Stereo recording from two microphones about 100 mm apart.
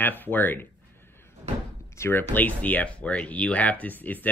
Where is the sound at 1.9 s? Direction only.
25° left (ahead or behind).